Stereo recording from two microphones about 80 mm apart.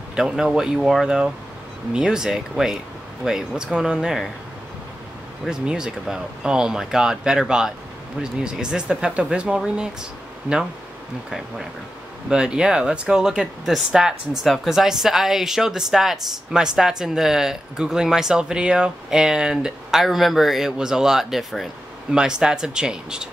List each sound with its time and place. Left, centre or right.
0.1 s speech: centre
5.5 s speech: centre
11.2 s speech: centre